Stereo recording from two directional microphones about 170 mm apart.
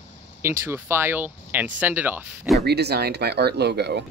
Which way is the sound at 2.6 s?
75° right (ahead or behind).